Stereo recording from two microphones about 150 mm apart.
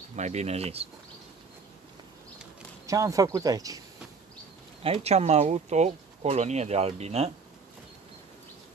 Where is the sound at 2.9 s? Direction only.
20° right (ahead or behind).